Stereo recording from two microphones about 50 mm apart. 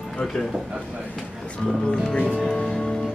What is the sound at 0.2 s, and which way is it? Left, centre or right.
Speech, centre.